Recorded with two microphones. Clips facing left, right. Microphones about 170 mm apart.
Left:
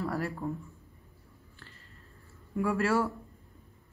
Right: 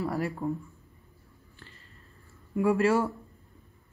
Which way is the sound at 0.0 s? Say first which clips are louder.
Right 3 dB; 15° right (ahead or behind).